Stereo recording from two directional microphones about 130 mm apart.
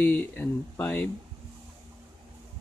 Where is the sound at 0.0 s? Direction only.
10° left (ahead or behind).